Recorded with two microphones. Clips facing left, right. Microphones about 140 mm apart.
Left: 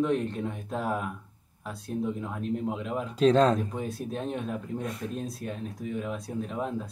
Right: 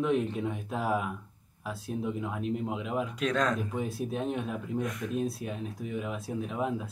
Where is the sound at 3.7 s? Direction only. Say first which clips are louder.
Right 1 dB; centre (ahead or behind).